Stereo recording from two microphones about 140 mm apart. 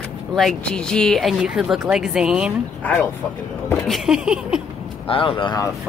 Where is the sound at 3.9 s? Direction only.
5° right (ahead or behind).